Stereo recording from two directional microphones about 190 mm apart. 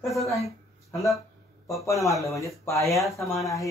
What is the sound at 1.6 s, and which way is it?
Speech, 15° left (ahead or behind).